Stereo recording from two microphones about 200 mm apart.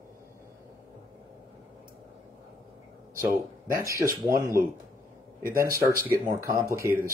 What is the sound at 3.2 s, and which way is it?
Speech, 15° right (ahead or behind).